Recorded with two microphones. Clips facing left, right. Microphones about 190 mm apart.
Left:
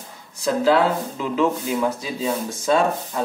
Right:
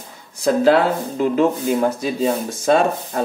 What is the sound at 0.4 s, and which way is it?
Speech, 55° right (ahead or behind).